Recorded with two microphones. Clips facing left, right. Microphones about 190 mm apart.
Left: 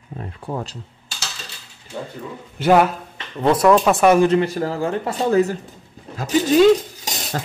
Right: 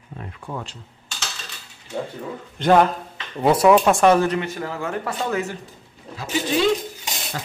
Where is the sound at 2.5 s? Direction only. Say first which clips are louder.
Left 1 dB; 5° left (ahead or behind).